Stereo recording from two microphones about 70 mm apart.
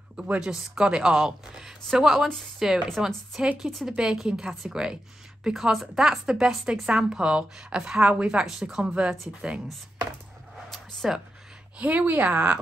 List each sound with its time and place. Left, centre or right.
0.1 s speech: centre
10.7 s a sound: centre
11.8 s speech: right